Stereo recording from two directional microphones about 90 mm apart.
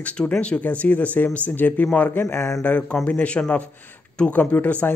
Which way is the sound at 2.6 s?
15° left (ahead or behind).